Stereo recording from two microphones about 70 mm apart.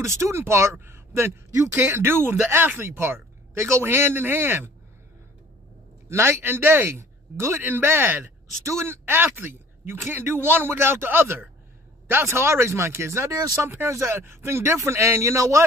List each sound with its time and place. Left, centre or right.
0.0 s speech: right
6.0 s speech: right